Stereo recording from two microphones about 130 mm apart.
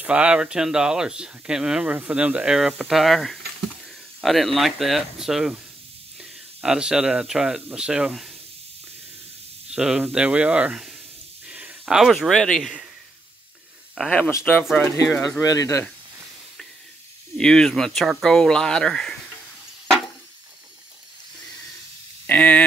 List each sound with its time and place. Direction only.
0.0 s speech: 10° right (ahead or behind)
6.6 s speech: 5° right (ahead or behind)
9.8 s speech: 5° right (ahead or behind)
11.4 s a sound: 10° right (ahead or behind)
11.8 s speech: centre (ahead or behind)
13.9 s speech: 10° left (ahead or behind)
15.4 s speech: 25° left (ahead or behind)
17.4 s speech: 5° left (ahead or behind)
22.2 s a sound: 10° left (ahead or behind)